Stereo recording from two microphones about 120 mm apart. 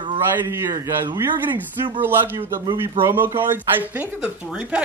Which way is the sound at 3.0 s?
20° right (ahead or behind).